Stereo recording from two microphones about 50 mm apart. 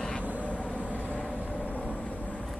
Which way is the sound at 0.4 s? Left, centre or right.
Left.